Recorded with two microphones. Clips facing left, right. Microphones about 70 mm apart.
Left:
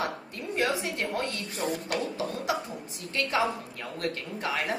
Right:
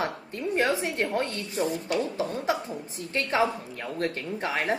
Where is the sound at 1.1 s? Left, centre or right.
Right.